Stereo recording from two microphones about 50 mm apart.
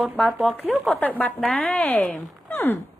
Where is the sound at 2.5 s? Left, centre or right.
Left.